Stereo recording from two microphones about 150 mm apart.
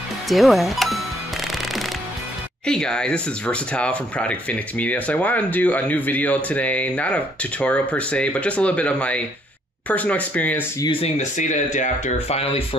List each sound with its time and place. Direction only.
0.3 s speech: centre (ahead or behind)
2.6 s speech: 5° left (ahead or behind)
10.9 s speech: 45° left (ahead or behind)